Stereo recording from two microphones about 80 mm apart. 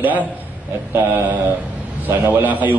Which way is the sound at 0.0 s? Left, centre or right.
Centre.